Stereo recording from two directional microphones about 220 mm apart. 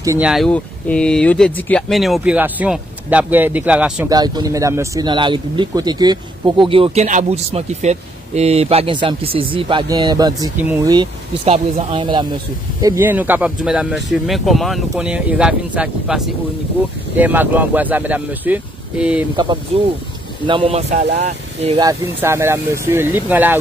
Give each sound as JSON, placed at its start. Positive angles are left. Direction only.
{"t": 0.0, "sound": "speech", "side_deg": -15}
{"t": 0.3, "sound": "speech", "side_deg": 5}
{"t": 4.1, "sound": "speech", "side_deg": -15}
{"t": 12.8, "sound": "speech", "side_deg": -10}
{"t": 17.2, "sound": "speech", "side_deg": -10}
{"t": 19.3, "sound": "speech", "side_deg": -20}
{"t": 21.7, "sound": "speech", "side_deg": -15}